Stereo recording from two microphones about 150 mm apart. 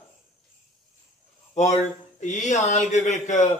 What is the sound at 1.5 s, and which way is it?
Speech, 50° left (ahead or behind).